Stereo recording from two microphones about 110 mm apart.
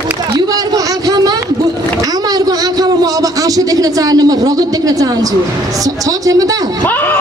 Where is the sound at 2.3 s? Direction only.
35° right (ahead or behind).